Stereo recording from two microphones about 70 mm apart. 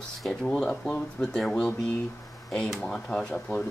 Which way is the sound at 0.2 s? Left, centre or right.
Centre.